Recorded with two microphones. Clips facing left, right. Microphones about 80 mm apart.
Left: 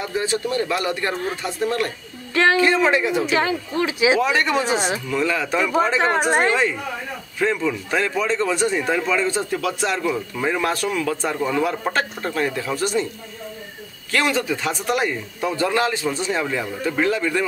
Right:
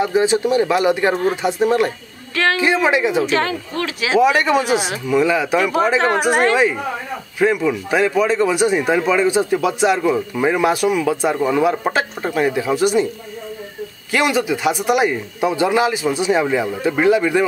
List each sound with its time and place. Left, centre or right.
0.0 s speech: centre
3.3 s speech: centre
4.2 s speech: centre
14.1 s speech: centre